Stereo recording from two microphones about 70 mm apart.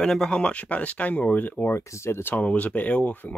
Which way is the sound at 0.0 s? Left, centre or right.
Centre.